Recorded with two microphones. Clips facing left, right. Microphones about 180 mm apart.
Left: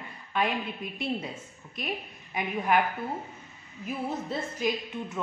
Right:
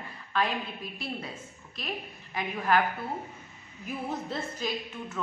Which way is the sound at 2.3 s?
15° left (ahead or behind).